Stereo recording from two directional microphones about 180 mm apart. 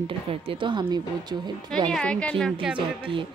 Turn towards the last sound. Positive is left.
turn(degrees=-30)  # may be behind; listen again after turning